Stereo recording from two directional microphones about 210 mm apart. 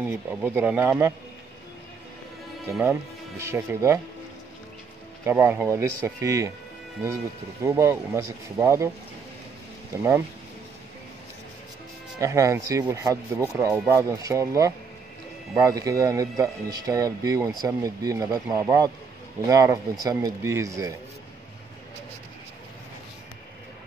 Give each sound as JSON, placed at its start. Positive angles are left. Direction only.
{"t": 0.1, "sound": "speech", "side_deg": -10}
{"t": 2.8, "sound": "speech", "side_deg": -10}
{"t": 5.2, "sound": "speech", "side_deg": -10}
{"t": 7.6, "sound": "speech", "side_deg": -10}
{"t": 9.9, "sound": "speech", "side_deg": -15}
{"t": 12.2, "sound": "speech", "side_deg": -15}